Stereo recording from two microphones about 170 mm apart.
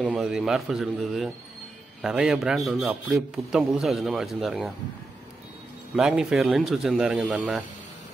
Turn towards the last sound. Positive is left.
turn(degrees=-5)  # may be behind; listen again after turning